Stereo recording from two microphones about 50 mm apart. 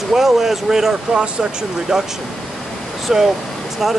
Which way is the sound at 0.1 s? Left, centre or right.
Centre.